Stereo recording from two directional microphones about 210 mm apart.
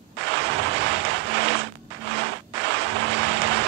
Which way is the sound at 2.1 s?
60° right (ahead or behind).